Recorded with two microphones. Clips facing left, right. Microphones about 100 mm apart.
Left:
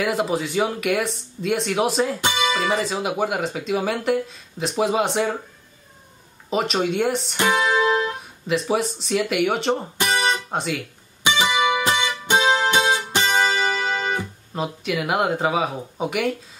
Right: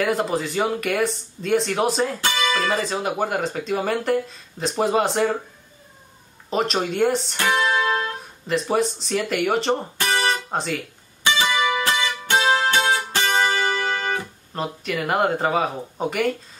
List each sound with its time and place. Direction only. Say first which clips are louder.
0.0 s speech: even; centre (ahead or behind)
2.2 s speech: left 1 dB; 20° left (ahead or behind)
2.8 s speech: even; centre (ahead or behind)
6.5 s speech: left 1 dB; centre (ahead or behind)
7.3 s music: left 1 dB; 15° left (ahead or behind)
8.2 s speech: left 1 dB; centre (ahead or behind)
9.9 s guitar: left 1 dB; 20° left (ahead or behind)
10.5 s speech: even; centre (ahead or behind)
11.2 s music: left 1 dB; 15° left (ahead or behind)
14.5 s speech: left 1 dB; 5° left (ahead or behind)